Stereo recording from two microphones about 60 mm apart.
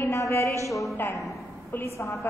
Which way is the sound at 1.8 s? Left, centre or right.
Left.